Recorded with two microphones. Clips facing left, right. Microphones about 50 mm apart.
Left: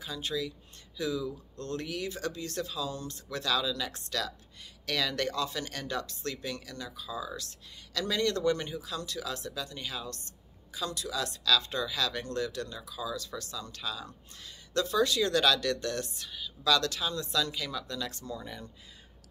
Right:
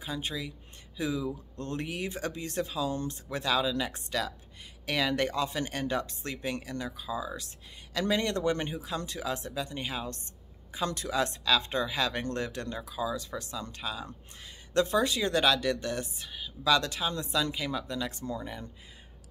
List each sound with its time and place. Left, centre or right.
0.0 s speech: right
10.7 s speech: right